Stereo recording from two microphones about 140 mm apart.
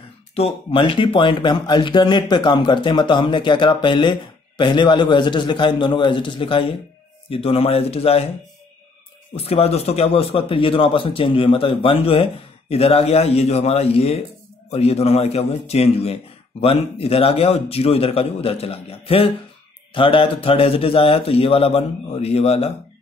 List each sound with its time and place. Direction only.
0.3 s speech: 45° left (ahead or behind)
9.3 s speech: 45° left (ahead or behind)